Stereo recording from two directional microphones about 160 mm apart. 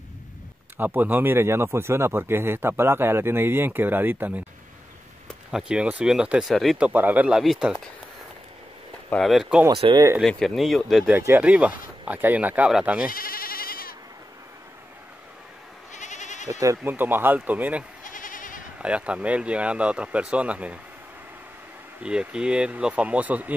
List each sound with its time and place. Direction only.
0.7 s speech: 10° right (ahead or behind)
5.3 s speech: 5° right (ahead or behind)
6.9 s speech: 10° right (ahead or behind)
9.1 s speech: centre (ahead or behind)
9.7 s speech: 30° right (ahead or behind)
10.2 s speech: centre (ahead or behind)
11.1 s speech: 10° right (ahead or behind)
13.0 s sheep: 65° left (ahead or behind)
15.9 s sheep: 50° left (ahead or behind)
16.4 s speech: 20° right (ahead or behind)
18.0 s goat: 55° left (ahead or behind)
18.8 s speech: 5° right (ahead or behind)
22.0 s speech: 5° right (ahead or behind)